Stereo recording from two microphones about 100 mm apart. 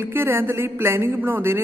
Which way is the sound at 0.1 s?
20° right (ahead or behind).